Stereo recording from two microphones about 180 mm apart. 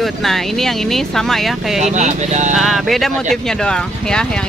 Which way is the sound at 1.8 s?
40° right (ahead or behind).